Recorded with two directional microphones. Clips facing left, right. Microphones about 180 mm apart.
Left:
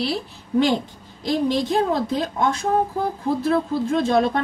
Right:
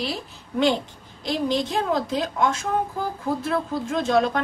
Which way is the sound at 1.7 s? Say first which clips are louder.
Left 3 dB; 35° left (ahead or behind).